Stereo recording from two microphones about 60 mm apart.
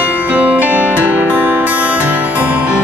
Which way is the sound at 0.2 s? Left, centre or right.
Right.